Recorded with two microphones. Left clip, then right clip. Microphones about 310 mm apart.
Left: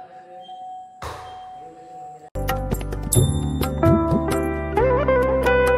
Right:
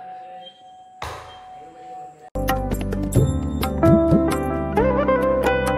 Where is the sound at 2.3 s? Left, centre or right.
Centre.